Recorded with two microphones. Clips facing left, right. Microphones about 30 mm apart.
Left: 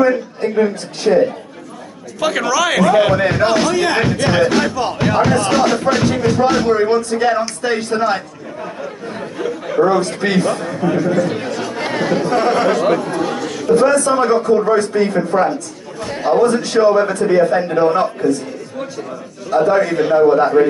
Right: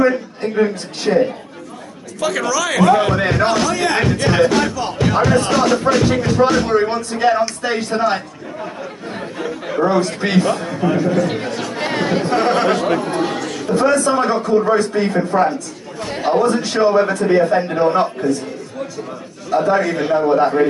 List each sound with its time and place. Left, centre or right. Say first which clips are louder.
0.4 s a woman's voice: left 1 dB; centre
2.1 s speech: left 2 dB; centre
3.2 s speech: left 2 dB; centre
4.7 s speech: left 2 dB; left
5.0 s speech: even; centre
9.1 s chatter: left 2 dB; centre
9.8 s a woman's voice: left 2 dB; centre
12.3 s speech: left 1 dB; centre
13.0 s chatter: even; right
13.7 s speech: left 1 dB; centre
16.0 s a man's voice: left 2 dB; right
16.3 s speech: left 3 dB; centre
19.5 s speech: left 2 dB; centre